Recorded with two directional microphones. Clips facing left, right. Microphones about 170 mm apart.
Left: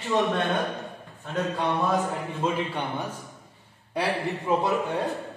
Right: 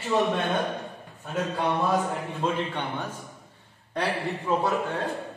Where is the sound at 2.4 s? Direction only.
10° left (ahead or behind).